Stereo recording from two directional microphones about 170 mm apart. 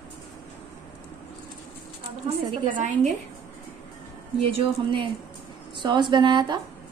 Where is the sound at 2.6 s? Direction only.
50° right (ahead or behind).